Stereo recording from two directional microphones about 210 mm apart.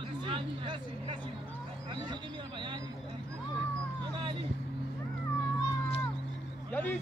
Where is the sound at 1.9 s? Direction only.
20° right (ahead or behind).